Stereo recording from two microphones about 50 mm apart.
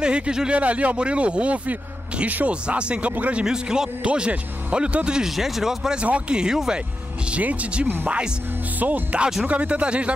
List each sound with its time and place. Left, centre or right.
0.0 s speech: centre
3.4 s speech: centre
4.0 s speech: right
5.2 s speech: centre
5.9 s speech: right
7.2 s speech: right